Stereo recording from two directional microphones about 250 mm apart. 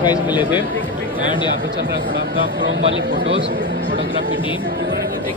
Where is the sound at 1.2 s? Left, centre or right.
Centre.